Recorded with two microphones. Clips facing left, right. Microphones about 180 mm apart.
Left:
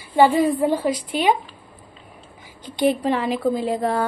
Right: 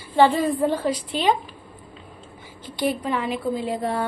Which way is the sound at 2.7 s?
20° left (ahead or behind).